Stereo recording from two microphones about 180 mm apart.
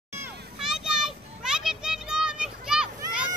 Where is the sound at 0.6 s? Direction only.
5° right (ahead or behind).